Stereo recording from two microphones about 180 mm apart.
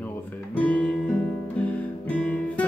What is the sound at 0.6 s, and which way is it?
Music, 10° left (ahead or behind).